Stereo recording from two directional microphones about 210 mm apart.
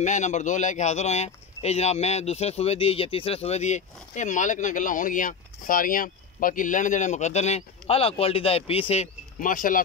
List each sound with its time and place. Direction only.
0.0 s speech: 35° left (ahead or behind)